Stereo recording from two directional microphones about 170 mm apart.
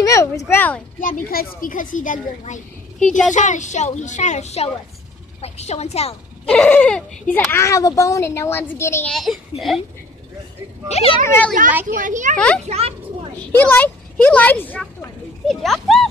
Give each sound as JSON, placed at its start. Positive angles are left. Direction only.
{"t": 0.0, "sound": "a child's voice", "side_deg": 20}
{"t": 1.0, "sound": "a child's voice", "side_deg": 60}
{"t": 6.5, "sound": "a child's voice", "side_deg": 10}
{"t": 9.1, "sound": "a child's voice", "side_deg": 0}
{"t": 10.9, "sound": "speech", "side_deg": 35}
{"t": 11.2, "sound": "a child's voice", "side_deg": 10}
{"t": 11.9, "sound": "speech", "side_deg": -50}
{"t": 12.4, "sound": "a child's voice", "side_deg": 5}
{"t": 12.6, "sound": "children playing", "side_deg": -35}
{"t": 13.4, "sound": "a woman's voice", "side_deg": 10}